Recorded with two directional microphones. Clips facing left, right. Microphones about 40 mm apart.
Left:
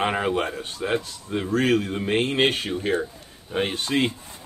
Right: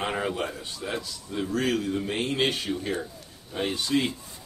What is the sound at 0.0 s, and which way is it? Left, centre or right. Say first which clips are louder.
Speech: left 5 dB; left.